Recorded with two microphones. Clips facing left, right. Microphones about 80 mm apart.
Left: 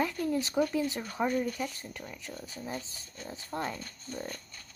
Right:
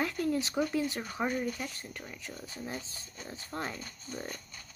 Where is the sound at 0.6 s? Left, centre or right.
Centre.